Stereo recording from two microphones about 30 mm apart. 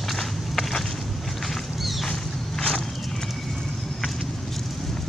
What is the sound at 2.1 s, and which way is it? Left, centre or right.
Vehicle, left.